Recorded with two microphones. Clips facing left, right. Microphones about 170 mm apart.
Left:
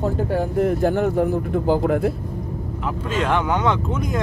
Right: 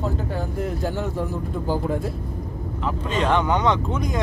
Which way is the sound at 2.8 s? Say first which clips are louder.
Even; 5° left (ahead or behind).